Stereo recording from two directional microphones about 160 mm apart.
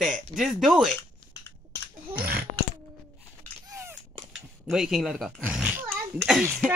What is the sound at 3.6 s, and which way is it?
Cap gun, 20° right (ahead or behind).